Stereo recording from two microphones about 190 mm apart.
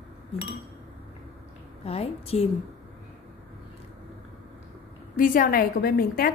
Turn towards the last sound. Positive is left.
turn(degrees=50)  # may be behind; listen again after turning